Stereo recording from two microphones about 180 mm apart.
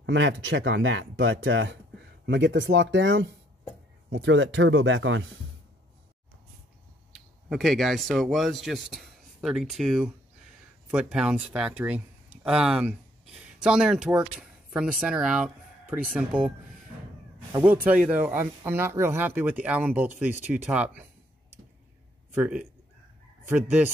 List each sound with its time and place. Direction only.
0.0 s speech: 85° right
2.2 s speech: 75° right (ahead or behind); by 5.2 s 90° right
7.1 s speech: centre (ahead or behind)
22.3 s speech: 10° right (ahead or behind)